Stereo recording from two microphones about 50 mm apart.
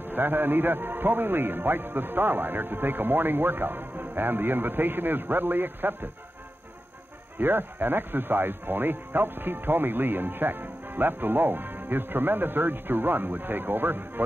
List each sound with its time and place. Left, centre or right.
0.0 s speech: right
7.3 s speech: right